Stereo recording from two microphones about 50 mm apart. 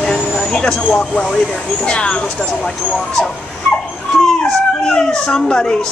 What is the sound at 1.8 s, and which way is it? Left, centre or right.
Speech, left.